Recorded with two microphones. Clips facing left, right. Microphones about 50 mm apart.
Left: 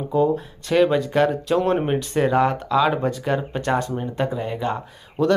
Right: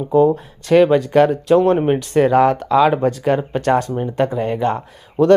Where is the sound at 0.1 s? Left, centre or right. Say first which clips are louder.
Right 6 dB; right.